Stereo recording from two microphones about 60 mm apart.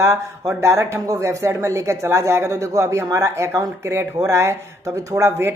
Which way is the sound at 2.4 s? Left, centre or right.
Right.